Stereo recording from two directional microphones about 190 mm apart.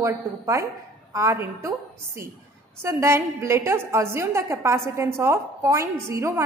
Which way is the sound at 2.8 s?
15° right (ahead or behind).